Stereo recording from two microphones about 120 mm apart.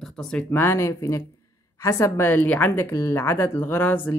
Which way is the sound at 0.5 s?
20° left (ahead or behind).